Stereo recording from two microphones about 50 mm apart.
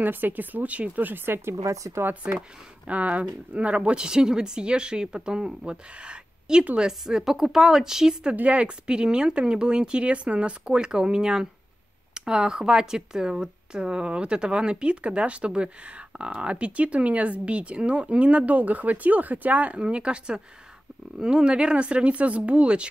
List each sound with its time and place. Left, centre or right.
0.0 s speech: right
1.5 s speech: right
2.3 s a woman's voice: right
8.4 s a woman's voice: right
19.8 s a woman's voice: centre